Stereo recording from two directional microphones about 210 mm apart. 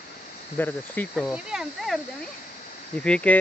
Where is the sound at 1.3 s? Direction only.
5° right (ahead or behind).